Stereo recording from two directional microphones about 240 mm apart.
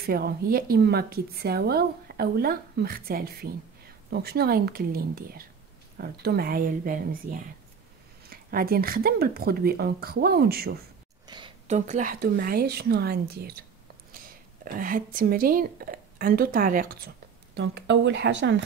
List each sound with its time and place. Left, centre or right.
0.0 s a woman's voice: right
11.2 s a woman's voice: centre; by 18.6 s right